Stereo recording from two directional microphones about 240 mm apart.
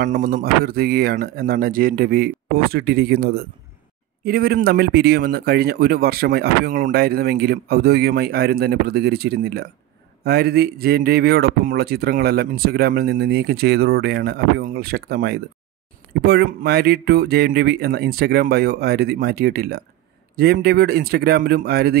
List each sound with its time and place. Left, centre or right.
0.1 s a man's voice: right